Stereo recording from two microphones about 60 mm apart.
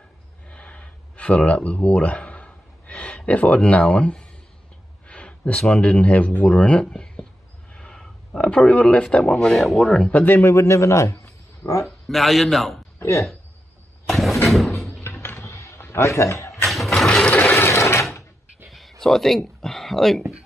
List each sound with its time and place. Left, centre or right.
0.5 s a sound: left
5.7 s speech: left
7.7 s a sound: centre
8.3 s speech: left
10.2 s speech: left
10.5 s a man's voice: left
11.8 s speech: centre
13.0 s speech: left
14.0 s vehicle: centre
14.9 s a sound: left
16.6 s a sound: centre
17.6 s mechanisms: left
18.7 s speech: centre